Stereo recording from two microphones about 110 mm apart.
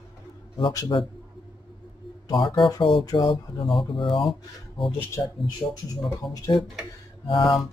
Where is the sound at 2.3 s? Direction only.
45° left (ahead or behind).